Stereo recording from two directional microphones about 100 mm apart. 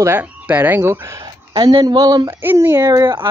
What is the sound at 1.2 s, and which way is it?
Speech, 45° right (ahead or behind).